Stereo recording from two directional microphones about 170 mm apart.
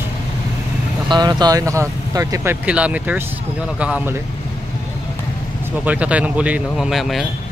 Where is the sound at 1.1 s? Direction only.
25° right (ahead or behind); by 4.2 s 5° right (ahead or behind).